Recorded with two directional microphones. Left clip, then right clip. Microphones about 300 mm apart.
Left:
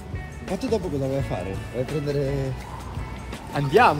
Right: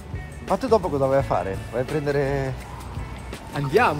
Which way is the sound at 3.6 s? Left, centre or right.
Centre.